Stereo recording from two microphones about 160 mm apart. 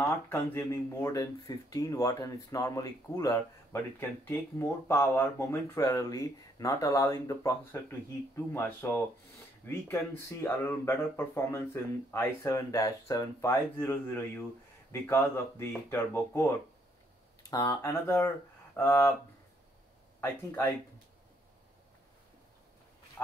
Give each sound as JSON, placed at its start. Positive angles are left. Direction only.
{"t": 0.0, "sound": "speech", "side_deg": 15}
{"t": 23.2, "sound": "duck", "side_deg": 10}